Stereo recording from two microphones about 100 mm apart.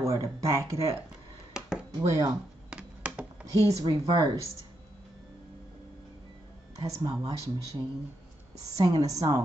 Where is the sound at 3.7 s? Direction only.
35° right (ahead or behind).